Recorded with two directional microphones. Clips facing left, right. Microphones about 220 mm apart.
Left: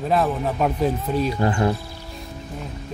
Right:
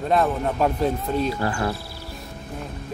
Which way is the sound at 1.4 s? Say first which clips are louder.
Left 4 dB; 20° left (ahead or behind).